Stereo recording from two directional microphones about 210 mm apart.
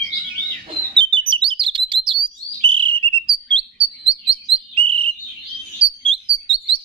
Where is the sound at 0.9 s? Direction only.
25° right (ahead or behind).